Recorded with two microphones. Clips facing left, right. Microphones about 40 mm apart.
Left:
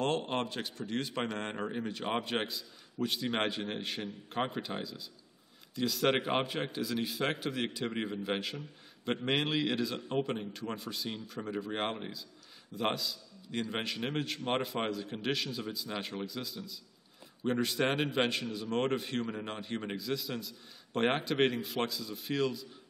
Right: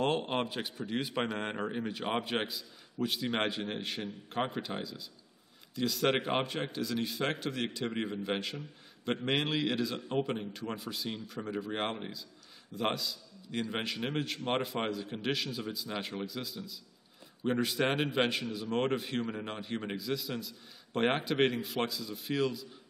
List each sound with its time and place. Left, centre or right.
0.0 s speech: centre